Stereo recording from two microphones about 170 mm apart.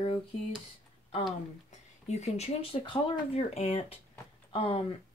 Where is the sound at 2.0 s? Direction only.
40° left (ahead or behind).